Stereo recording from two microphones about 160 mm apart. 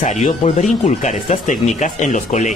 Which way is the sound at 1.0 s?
55° left (ahead or behind).